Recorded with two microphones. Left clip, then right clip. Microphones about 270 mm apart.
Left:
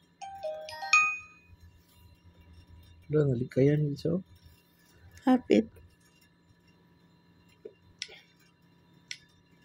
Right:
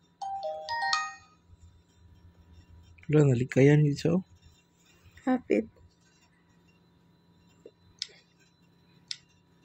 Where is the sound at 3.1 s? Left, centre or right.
Right.